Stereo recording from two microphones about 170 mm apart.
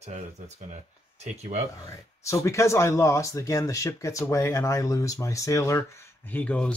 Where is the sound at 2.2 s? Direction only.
15° left (ahead or behind).